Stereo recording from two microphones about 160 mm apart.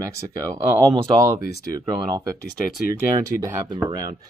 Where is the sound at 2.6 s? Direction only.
65° left (ahead or behind).